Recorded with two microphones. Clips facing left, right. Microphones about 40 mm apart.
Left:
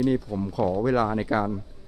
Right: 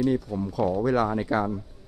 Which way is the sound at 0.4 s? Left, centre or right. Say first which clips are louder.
Even; centre.